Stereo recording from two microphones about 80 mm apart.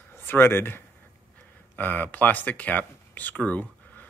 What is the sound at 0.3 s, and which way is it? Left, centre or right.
Speech, left.